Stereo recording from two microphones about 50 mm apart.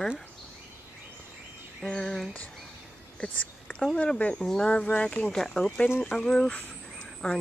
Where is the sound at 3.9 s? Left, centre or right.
Left.